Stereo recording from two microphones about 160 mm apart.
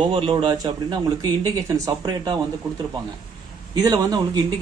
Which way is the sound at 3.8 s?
25° right (ahead or behind).